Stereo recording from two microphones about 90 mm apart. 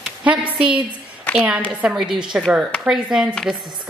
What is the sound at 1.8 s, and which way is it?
Speech, 5° right (ahead or behind).